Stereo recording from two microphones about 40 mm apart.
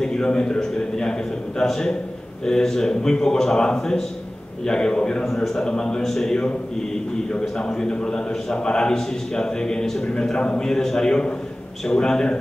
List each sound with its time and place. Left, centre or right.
0.0 s a man's voice: centre
5.2 s a man's voice: centre
7.3 s a man's voice: left
10.7 s a man's voice: centre